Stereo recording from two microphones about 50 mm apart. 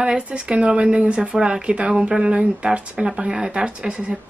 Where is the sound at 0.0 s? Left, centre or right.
Right.